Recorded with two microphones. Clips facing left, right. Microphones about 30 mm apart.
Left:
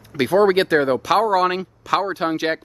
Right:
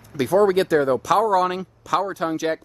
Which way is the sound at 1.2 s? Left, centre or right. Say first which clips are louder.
Left 1 dB; left.